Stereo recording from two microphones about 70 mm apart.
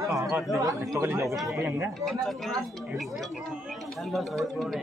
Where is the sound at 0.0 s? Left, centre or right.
Right.